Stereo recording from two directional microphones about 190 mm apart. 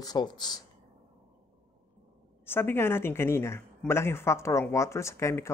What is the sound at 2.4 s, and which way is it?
Speech, 10° left (ahead or behind).